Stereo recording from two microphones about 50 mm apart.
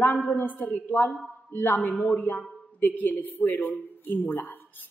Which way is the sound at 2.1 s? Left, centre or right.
Left.